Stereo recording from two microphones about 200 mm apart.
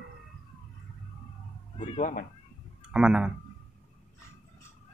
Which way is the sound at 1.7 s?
40° left (ahead or behind).